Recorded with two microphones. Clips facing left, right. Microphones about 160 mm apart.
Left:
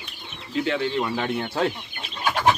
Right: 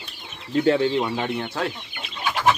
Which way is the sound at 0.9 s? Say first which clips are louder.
Right 2 dB; 15° right (ahead or behind).